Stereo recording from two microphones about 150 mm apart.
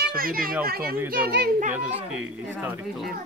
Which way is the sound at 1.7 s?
5° right (ahead or behind).